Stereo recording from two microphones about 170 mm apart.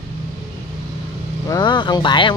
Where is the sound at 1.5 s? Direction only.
25° left (ahead or behind).